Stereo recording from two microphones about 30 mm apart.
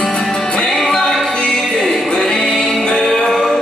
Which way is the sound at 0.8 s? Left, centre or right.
Left.